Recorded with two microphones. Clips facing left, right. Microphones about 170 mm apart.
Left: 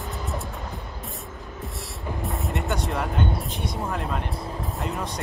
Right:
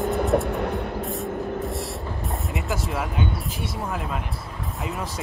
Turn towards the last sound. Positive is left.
turn(degrees=0)  # may be behind; listen again after turning